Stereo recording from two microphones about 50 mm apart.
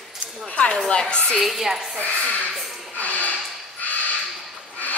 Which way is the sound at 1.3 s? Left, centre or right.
Centre.